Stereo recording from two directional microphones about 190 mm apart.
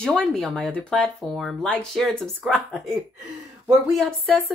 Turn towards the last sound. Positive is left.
turn(degrees=0)  # may be behind; listen again after turning